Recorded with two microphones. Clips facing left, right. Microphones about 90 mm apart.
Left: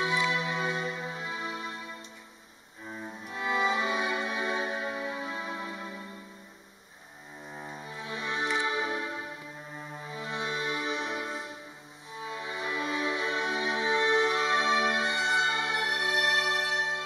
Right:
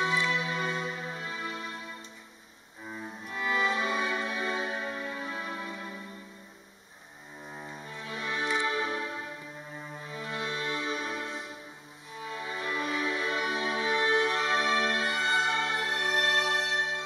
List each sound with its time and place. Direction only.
0.0 s music: 10° left (ahead or behind)
3.3 s music: 20° left (ahead or behind)
7.5 s cello: 10° left (ahead or behind)
8.0 s music: 20° left (ahead or behind)
10.1 s music: 20° left (ahead or behind)
12.3 s music: 15° left (ahead or behind)